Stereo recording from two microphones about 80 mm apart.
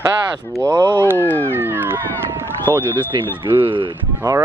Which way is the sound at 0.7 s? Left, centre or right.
Right.